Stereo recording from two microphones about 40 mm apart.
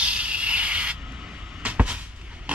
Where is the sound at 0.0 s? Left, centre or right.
Right.